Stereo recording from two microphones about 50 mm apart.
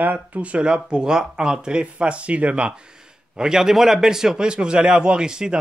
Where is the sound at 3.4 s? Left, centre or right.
Centre.